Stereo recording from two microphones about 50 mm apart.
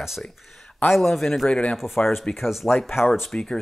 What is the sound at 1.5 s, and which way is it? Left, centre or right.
Speech, left.